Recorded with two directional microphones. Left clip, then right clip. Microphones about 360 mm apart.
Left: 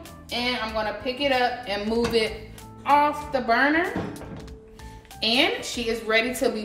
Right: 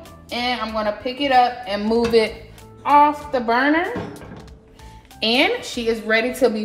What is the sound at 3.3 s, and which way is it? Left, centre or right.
Speech, centre.